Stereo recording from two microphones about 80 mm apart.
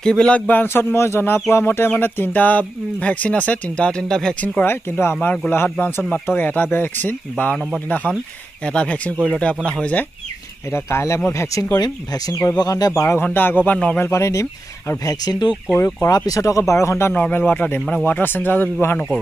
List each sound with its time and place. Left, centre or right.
0.0 s speech: centre
0.5 s speech: left
0.9 s speech: left; by 4.6 s centre
4.6 s speech: left
5.2 s speech: centre
5.5 s speech: left
8.6 s speech: centre
10.7 s speech: left
11.8 s speech: left
13.2 s speech: left
14.1 s speech: left
15.7 s speech: left
16.2 s speech: left
17.1 s speech: centre